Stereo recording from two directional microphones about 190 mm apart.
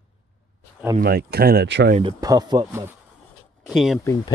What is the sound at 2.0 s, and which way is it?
Speech, 25° right (ahead or behind).